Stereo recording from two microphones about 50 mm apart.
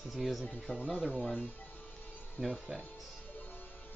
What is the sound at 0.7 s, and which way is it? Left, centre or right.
Speech, left.